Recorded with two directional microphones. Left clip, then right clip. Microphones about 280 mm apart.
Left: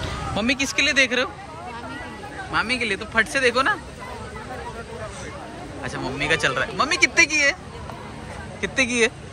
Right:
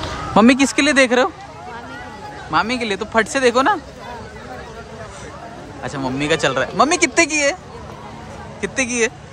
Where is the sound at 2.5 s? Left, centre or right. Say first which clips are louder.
Right 4 dB; centre.